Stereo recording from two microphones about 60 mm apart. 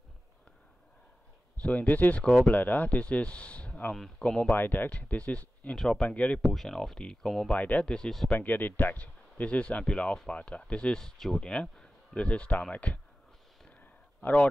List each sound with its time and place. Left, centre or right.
1.6 s speech: left
3.9 s speech: centre
4.5 s speech: left
6.4 s speech: centre
7.4 s speech: left
7.8 s speech: centre
8.3 s speech: left
13.7 s a sound: left